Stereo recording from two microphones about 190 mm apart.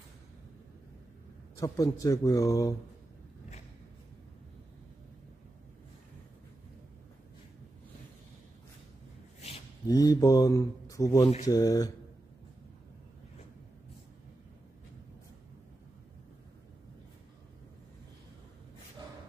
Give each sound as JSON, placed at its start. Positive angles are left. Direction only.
{"t": 1.6, "sound": "a man's voice", "side_deg": 15}
{"t": 9.8, "sound": "speech", "side_deg": 20}